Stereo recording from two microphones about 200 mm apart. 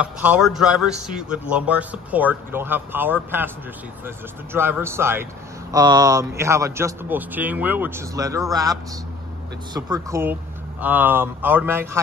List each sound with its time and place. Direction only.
0.0 s a man's voice: 5° right (ahead or behind)
9.8 s a man's voice: 20° right (ahead or behind)